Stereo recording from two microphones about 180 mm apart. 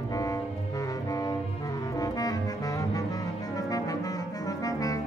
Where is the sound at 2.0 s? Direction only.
20° left (ahead or behind).